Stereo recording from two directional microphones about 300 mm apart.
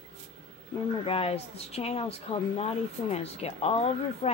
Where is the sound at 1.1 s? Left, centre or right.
Centre.